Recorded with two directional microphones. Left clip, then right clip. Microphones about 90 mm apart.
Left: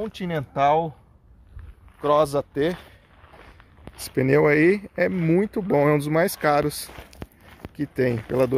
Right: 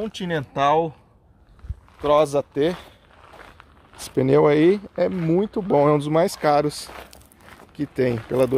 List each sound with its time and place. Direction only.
0.0 s speech: 40° left (ahead or behind)
2.0 s speech: 5° left (ahead or behind)
2.5 s speech: 15° right (ahead or behind)
4.0 s speech: 20° right (ahead or behind)
5.3 s speech: centre (ahead or behind)